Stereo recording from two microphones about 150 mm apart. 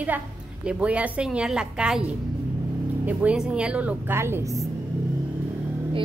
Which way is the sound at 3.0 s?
5° right (ahead or behind).